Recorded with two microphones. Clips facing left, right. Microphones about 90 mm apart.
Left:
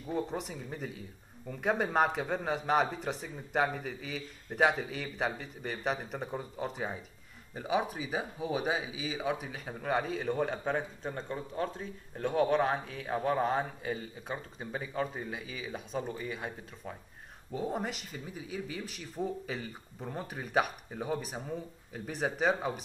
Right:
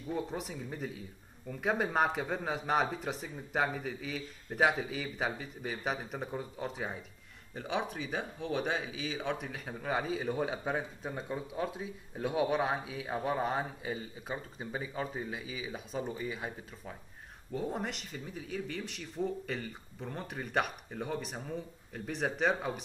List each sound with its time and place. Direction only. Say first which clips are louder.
0.1 s speech: left 2 dB; centre (ahead or behind)